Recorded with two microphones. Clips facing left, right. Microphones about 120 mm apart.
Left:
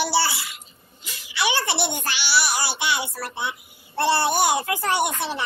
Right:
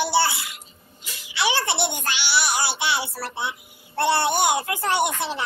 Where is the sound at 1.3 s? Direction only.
25° right (ahead or behind).